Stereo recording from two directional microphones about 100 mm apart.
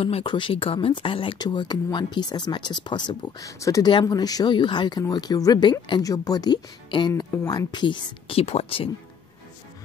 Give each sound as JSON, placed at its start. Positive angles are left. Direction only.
{"t": 0.2, "sound": "speech", "side_deg": 55}
{"t": 3.3, "sound": "speech", "side_deg": 35}
{"t": 6.0, "sound": "speech", "side_deg": 35}
{"t": 8.4, "sound": "speech", "side_deg": 85}